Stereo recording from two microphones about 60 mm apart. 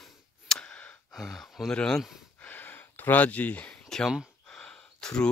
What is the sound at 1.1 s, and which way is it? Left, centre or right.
Speech, centre.